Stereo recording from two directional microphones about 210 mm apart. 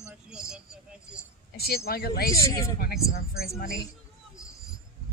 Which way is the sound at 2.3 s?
15° left (ahead or behind).